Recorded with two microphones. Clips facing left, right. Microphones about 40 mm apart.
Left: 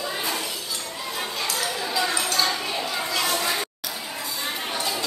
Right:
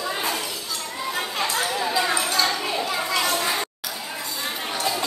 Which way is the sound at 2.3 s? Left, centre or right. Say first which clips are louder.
Right 2 dB; centre.